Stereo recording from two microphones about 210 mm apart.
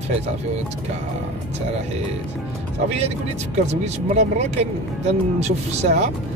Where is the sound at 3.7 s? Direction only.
30° right (ahead or behind).